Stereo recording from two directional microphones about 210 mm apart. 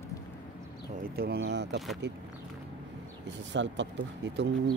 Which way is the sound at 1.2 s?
50° right (ahead or behind).